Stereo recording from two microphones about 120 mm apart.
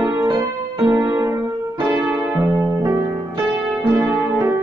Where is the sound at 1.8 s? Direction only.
20° right (ahead or behind).